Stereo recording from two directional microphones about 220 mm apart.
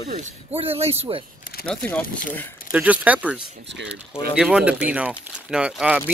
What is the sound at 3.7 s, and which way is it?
Speech, 55° right (ahead or behind).